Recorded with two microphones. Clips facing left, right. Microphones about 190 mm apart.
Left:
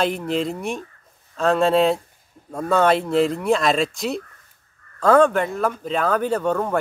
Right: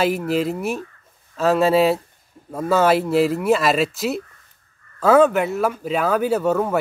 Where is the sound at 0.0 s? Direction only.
5° right (ahead or behind).